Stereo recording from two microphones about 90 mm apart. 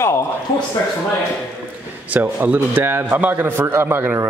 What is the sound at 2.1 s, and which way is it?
A man's voice, 20° right (ahead or behind).